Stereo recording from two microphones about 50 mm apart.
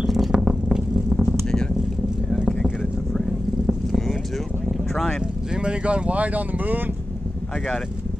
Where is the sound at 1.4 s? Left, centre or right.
Centre.